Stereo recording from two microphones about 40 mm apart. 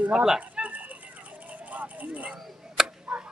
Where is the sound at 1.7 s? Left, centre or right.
Right.